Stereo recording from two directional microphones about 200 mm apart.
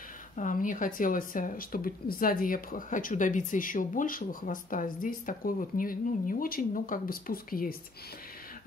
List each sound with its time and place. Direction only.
0.4 s speech: 40° left (ahead or behind)